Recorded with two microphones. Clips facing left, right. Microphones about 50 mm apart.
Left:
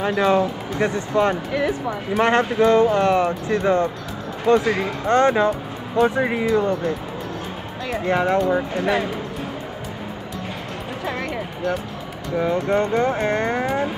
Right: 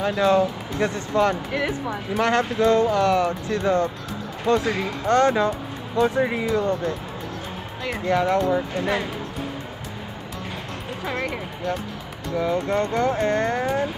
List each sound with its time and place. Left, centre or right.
0.0 s speech: left
8.0 s speech: left
12.4 s speech: left